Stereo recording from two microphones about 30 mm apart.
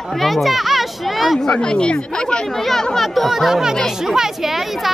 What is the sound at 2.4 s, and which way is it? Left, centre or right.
Speech, centre.